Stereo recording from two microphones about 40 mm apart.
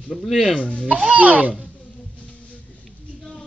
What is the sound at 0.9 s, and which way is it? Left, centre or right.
Speech, right.